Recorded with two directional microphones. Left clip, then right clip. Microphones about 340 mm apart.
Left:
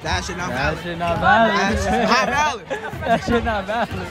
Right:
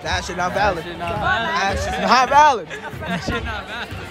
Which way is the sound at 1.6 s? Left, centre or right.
Centre.